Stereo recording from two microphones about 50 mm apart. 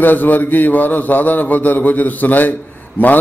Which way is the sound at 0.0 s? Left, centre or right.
Left.